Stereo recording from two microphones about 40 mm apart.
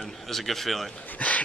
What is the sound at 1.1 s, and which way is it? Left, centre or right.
Dog, left.